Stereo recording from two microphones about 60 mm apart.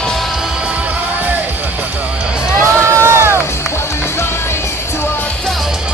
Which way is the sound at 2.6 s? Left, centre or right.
Right.